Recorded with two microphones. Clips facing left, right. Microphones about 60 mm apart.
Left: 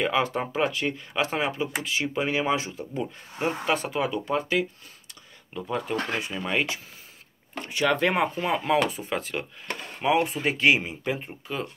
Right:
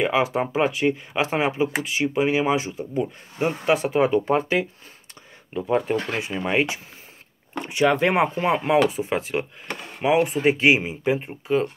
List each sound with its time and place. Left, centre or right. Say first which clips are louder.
0.0 s speech: right 4 dB; centre
3.9 s speech: right 7 dB; right
6.1 s speech: right 5 dB; right